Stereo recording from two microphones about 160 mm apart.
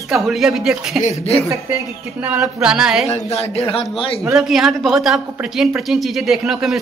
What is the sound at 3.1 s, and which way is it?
A man's voice, 40° left (ahead or behind).